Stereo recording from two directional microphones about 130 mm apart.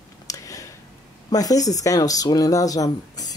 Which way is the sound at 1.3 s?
30° left (ahead or behind).